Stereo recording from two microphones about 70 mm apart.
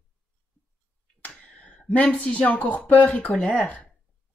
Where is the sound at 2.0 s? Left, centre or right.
Centre.